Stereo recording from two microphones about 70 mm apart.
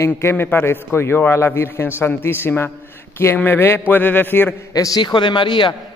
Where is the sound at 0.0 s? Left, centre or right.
Left.